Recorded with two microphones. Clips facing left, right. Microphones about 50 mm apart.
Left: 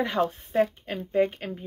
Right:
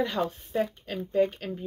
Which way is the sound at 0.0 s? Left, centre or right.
Left.